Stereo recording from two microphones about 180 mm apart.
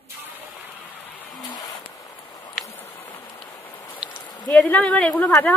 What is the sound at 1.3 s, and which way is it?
Vehicle, 20° left (ahead or behind).